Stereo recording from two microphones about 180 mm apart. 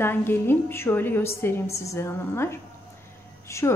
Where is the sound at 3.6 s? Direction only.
15° left (ahead or behind).